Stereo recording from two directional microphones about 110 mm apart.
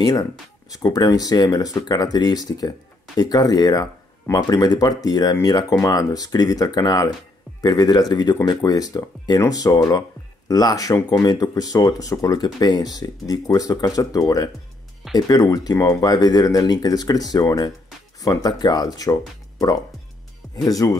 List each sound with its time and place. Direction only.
0.0 s speech: 35° left (ahead or behind)
20.6 s speech: 35° left (ahead or behind)